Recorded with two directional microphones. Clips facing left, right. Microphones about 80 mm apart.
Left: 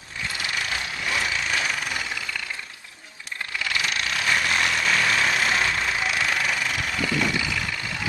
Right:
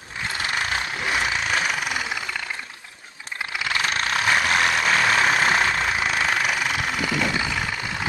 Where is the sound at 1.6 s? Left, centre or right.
Centre.